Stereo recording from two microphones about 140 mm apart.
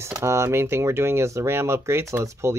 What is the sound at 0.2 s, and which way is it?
Speech, 20° right (ahead or behind).